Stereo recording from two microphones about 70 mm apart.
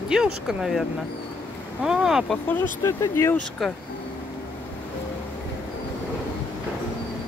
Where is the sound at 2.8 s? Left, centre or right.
Left.